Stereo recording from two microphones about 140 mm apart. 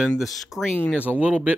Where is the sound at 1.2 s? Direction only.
10° right (ahead or behind).